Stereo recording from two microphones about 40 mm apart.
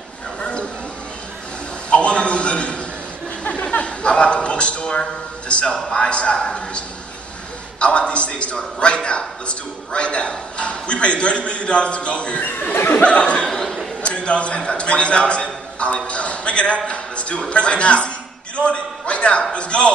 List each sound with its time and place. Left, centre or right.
0.4 s a sound: left
1.9 s a sound: left
3.7 s chuckle: left
5.5 s a man's voice: left
7.8 s a man's voice: left
12.4 s speech: left
12.7 s speech: left
13.0 s a man's voice: left
13.5 s a sound: centre
14.0 s a man's voice: left